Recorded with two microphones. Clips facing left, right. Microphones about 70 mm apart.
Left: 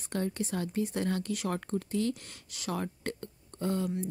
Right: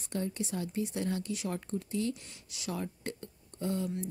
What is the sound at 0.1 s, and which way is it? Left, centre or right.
A woman's voice, left.